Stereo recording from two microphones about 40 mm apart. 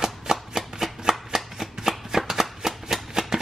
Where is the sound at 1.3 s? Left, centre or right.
Centre.